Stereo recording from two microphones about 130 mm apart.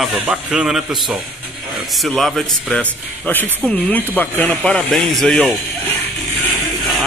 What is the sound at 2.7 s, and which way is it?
Speech, 10° left (ahead or behind).